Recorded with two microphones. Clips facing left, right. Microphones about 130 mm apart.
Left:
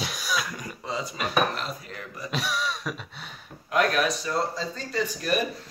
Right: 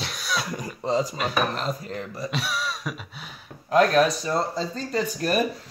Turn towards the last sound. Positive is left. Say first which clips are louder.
# right 2 dB
turn(degrees=-40)  # may be behind; listen again after turning